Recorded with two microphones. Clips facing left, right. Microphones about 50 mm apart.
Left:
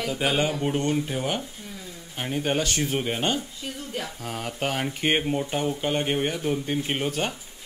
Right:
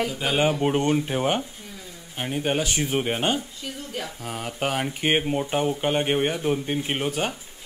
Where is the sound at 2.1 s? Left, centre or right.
Centre.